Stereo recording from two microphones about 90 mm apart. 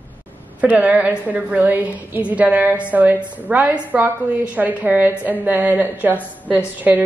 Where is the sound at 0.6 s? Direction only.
20° right (ahead or behind).